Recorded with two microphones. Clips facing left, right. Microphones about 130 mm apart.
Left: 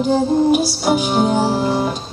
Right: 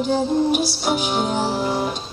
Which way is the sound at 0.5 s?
40° left (ahead or behind).